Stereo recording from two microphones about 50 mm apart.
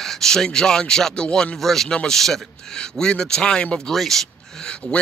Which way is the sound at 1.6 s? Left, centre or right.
Centre.